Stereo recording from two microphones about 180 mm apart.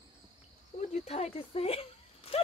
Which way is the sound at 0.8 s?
35° left (ahead or behind).